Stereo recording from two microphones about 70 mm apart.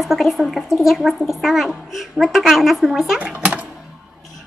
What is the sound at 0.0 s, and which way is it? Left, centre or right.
A woman's voice, centre.